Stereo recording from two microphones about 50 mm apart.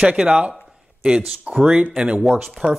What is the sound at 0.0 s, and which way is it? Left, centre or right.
Speech, centre.